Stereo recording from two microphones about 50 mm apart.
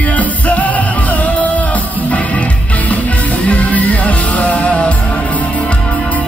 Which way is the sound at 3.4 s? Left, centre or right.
Left.